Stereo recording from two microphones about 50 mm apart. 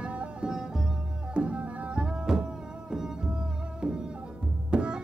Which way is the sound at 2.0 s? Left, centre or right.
Centre.